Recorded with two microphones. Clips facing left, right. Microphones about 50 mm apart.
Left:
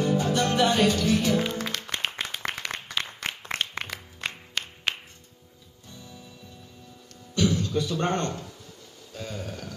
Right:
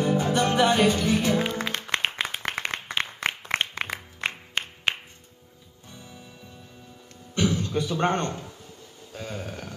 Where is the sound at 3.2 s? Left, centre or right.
Right.